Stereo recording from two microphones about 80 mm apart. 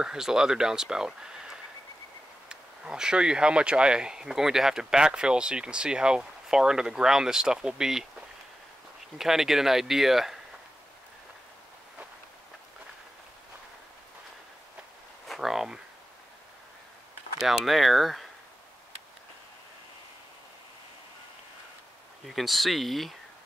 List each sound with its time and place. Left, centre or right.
0.0 s speech: centre
9.2 s speech: centre
15.2 s a sound: centre
17.4 s speech: centre
22.2 s speech: centre